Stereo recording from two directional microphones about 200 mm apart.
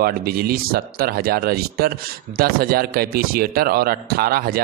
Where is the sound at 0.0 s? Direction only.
50° right (ahead or behind).